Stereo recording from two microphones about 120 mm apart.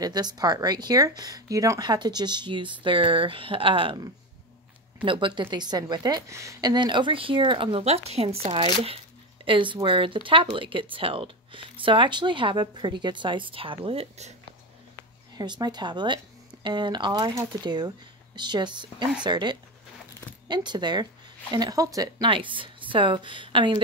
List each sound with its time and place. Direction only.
0.0 s speech: 35° right (ahead or behind)
5.0 s speech: 45° right (ahead or behind); by 6.7 s 25° right (ahead or behind)
6.7 s speech: 40° right (ahead or behind)
7.8 s speech: 60° right (ahead or behind)
15.3 s speech: 35° right (ahead or behind)
22.2 s speech: 45° right (ahead or behind)